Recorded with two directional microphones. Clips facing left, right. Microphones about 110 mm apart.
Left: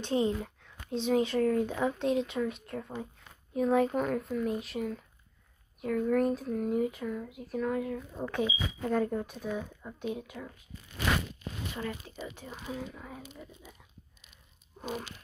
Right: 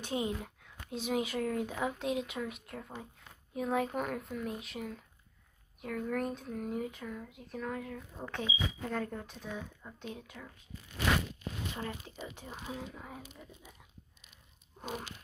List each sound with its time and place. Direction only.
0.0 s speech: 15° right (ahead or behind); by 10.5 s 15° left (ahead or behind)
11.7 s speech: 20° right (ahead or behind)
14.8 s a sound: 15° right (ahead or behind)